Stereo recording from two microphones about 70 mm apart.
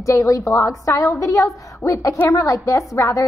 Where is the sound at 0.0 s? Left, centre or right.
Left.